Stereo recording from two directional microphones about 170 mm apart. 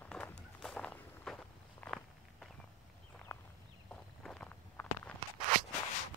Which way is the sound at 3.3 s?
15° left (ahead or behind).